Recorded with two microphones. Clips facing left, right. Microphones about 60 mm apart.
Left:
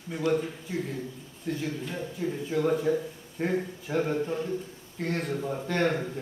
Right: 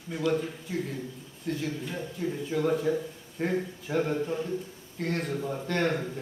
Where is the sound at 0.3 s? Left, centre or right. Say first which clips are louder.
Left 2 dB; centre.